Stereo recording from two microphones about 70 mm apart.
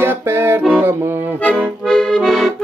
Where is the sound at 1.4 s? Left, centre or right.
Centre.